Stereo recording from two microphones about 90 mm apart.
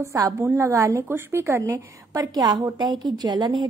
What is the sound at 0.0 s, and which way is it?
A woman's voice, 35° right (ahead or behind).